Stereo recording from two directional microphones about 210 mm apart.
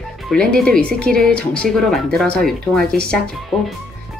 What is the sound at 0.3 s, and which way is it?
Speech, 5° left (ahead or behind).